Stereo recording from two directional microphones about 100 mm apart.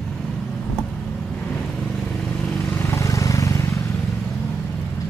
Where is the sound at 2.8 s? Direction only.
30° left (ahead or behind).